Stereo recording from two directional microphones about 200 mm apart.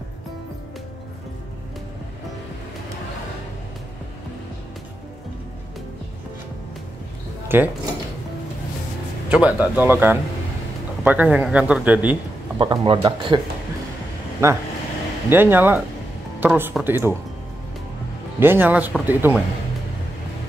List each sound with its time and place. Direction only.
7.4 s speech: 10° right (ahead or behind)
9.3 s speech: 5° right (ahead or behind)
12.5 s speech: 25° right (ahead or behind)
14.4 s speech: 15° right (ahead or behind)
18.4 s speech: 10° right (ahead or behind)